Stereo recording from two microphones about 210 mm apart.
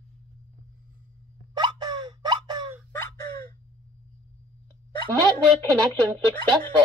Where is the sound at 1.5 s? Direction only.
20° right (ahead or behind).